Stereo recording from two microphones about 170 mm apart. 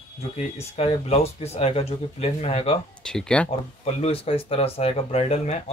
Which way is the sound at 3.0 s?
5° left (ahead or behind).